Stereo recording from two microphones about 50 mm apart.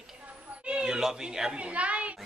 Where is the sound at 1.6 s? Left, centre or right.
Right.